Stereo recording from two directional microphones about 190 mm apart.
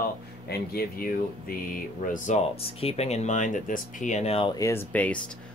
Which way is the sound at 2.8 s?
35° left (ahead or behind).